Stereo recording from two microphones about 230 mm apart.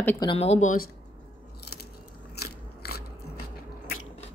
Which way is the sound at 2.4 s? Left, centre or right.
Left.